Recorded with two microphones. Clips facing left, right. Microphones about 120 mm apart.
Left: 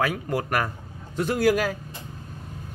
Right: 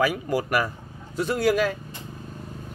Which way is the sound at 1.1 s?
Centre (ahead or behind).